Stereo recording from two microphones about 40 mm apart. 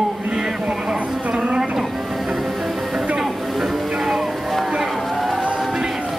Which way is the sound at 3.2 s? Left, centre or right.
Centre.